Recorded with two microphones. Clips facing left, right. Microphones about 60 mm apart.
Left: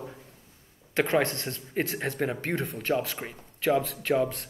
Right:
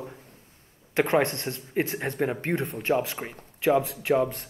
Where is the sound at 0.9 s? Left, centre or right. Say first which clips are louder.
Right 2 dB; right.